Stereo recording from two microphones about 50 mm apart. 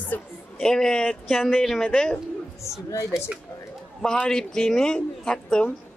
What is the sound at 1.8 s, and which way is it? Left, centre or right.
Speech, centre.